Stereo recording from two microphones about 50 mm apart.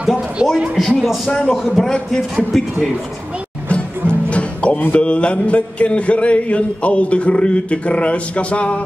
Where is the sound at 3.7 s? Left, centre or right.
Left.